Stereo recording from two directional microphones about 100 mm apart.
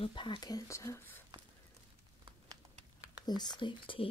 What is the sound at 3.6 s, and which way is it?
Speech, 60° left (ahead or behind).